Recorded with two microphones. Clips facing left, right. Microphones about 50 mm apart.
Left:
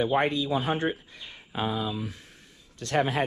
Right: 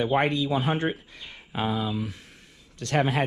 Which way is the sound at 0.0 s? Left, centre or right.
Right.